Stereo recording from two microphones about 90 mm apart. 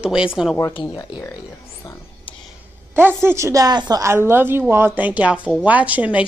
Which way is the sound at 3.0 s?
25° right (ahead or behind).